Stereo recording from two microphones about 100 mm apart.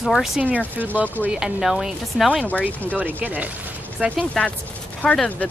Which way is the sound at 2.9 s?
15° right (ahead or behind).